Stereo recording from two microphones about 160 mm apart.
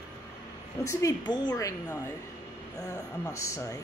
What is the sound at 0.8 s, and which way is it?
A woman's voice, 20° left (ahead or behind).